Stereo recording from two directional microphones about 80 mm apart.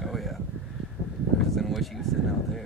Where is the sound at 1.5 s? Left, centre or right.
Centre.